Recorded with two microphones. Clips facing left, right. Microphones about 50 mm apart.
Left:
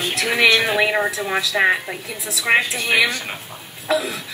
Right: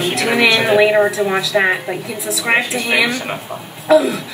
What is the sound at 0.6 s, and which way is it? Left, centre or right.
Speech, right.